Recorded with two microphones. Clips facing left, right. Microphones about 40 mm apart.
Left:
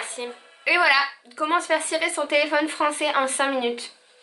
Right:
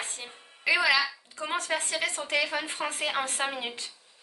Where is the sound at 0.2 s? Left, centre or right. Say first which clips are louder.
Left 6 dB; centre.